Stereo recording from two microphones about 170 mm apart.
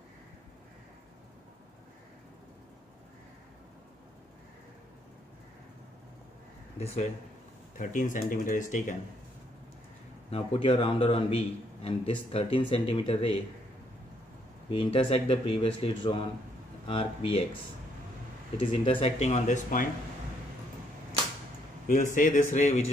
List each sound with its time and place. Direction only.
7.7 s speech: 50° left (ahead or behind)
10.3 s a man's voice: 35° left (ahead or behind)
14.7 s a man's voice: 30° left (ahead or behind)
18.6 s a man's voice: 30° left (ahead or behind); by 19.9 s 50° left (ahead or behind)
21.8 s speech: 50° left (ahead or behind)